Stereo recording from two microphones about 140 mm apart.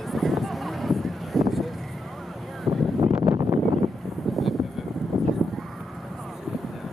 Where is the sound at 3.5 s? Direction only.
Centre (ahead or behind).